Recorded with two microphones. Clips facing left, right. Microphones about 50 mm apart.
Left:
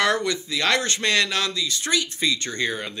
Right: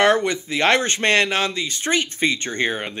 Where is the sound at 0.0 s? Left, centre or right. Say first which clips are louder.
Right 5 dB; right.